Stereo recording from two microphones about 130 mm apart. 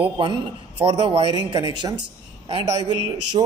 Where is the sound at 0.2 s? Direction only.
35° right (ahead or behind).